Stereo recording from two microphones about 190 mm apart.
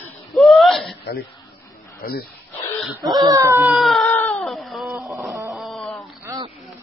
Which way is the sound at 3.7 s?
Centre (ahead or behind).